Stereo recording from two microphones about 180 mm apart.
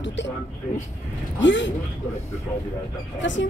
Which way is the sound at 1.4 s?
90° left.